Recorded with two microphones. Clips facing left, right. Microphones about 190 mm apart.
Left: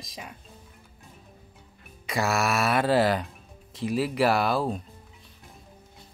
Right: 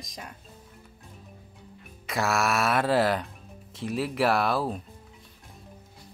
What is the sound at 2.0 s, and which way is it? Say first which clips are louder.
A woman's voice: left 1 dB; centre (ahead or behind).